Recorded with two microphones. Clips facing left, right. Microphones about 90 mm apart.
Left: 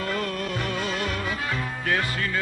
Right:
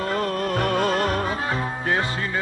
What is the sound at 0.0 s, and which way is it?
Music, 35° right (ahead or behind).